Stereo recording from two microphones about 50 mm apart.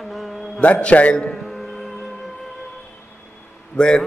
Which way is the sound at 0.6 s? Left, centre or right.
Left.